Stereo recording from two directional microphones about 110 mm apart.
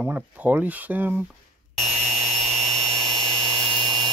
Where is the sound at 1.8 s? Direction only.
70° right (ahead or behind); by 4.1 s 45° right (ahead or behind).